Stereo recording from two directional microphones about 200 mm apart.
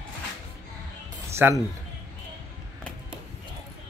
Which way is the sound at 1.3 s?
10° right (ahead or behind).